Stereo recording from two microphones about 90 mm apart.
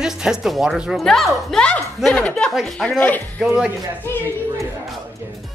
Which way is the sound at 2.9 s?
20° left (ahead or behind).